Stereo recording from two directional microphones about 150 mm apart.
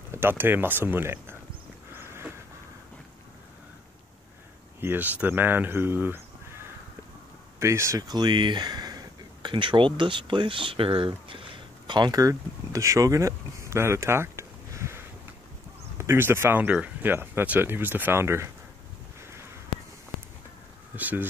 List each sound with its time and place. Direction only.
0.1 s speech: 15° right (ahead or behind)
2.0 s vehicle: 15° right (ahead or behind)
4.7 s speech: 15° right (ahead or behind)
7.5 s speech: 20° right (ahead or behind)
16.0 s speech: 15° right (ahead or behind)
20.9 s speech: 10° right (ahead or behind)